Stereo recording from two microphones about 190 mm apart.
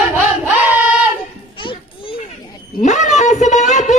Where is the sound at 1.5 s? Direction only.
25° left (ahead or behind).